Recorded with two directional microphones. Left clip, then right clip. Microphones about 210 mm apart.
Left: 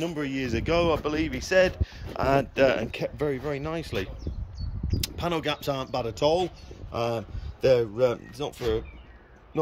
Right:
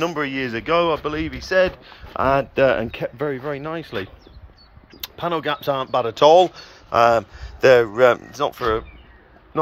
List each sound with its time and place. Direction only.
0.0 s speech: 5° left (ahead or behind)
7.7 s speech: 35° right (ahead or behind)
8.3 s speech: centre (ahead or behind)